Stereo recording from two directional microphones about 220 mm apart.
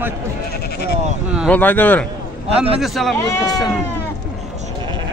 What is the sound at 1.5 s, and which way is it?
A man's voice, 5° left (ahead or behind).